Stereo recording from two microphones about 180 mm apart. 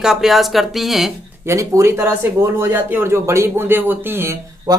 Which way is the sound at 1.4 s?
15° right (ahead or behind).